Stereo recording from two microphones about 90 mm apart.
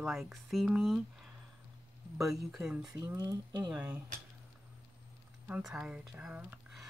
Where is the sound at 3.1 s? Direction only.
50° right (ahead or behind).